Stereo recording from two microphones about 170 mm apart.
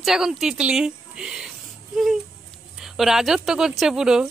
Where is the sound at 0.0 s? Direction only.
Centre (ahead or behind).